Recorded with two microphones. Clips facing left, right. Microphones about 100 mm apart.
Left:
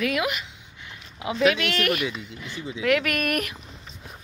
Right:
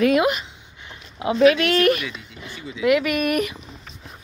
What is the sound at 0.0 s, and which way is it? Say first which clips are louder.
Speech: right 8 dB; 30° right (ahead or behind).